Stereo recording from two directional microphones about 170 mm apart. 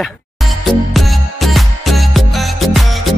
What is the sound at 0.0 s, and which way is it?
Music, centre (ahead or behind).